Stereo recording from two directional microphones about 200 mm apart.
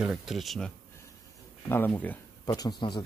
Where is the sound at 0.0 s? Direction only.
Centre (ahead or behind).